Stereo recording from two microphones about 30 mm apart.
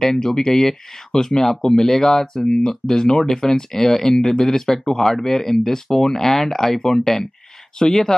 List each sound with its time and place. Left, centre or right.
0.0 s speech: centre